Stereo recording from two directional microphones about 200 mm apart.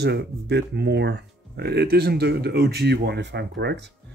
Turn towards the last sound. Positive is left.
turn(degrees=-60)  # may be behind; listen again after turning